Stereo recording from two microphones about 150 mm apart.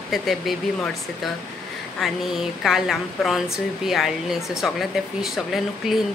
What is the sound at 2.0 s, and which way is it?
Speech, centre (ahead or behind).